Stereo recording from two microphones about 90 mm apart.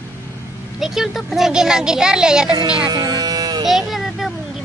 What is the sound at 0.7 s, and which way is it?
A child's voice, 5° right (ahead or behind).